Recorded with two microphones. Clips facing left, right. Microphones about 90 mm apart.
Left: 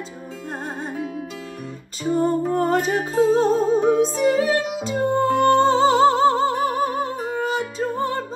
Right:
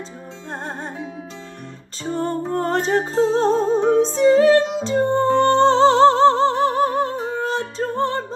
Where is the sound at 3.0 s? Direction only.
30° right (ahead or behind).